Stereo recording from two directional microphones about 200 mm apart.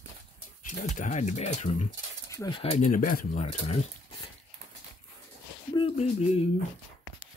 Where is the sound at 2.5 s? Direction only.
30° left (ahead or behind).